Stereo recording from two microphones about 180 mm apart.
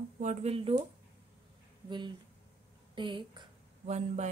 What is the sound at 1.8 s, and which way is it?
Speech, 25° right (ahead or behind).